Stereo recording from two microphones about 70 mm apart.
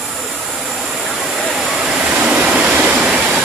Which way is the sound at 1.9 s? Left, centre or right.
Centre.